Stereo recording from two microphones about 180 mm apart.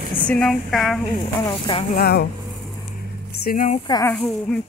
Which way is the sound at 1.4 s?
25° left (ahead or behind).